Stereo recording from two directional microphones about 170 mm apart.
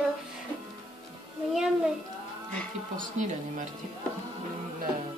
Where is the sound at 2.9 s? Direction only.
50° right (ahead or behind).